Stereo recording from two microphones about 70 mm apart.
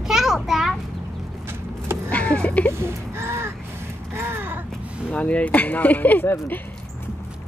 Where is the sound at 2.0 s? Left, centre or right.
Centre.